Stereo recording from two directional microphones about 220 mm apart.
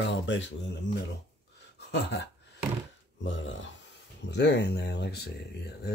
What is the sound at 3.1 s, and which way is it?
Speech, 60° left (ahead or behind).